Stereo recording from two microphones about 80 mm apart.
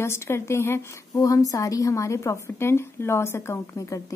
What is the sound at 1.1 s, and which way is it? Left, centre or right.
A woman's voice, left.